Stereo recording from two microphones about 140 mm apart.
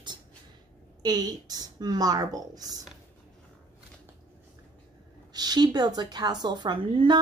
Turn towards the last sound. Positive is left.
turn(degrees=-35)  # may be behind; listen again after turning